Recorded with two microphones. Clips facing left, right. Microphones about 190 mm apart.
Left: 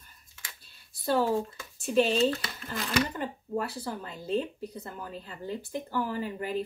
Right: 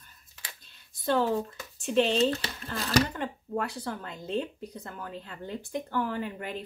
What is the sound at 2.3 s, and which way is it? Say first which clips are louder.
Speech: right 1 dB; 40° right (ahead or behind).